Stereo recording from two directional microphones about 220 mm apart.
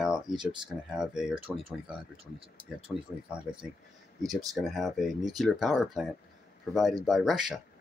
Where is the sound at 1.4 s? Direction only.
25° right (ahead or behind).